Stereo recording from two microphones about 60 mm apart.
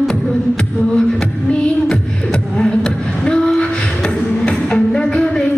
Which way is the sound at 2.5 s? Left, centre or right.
Centre.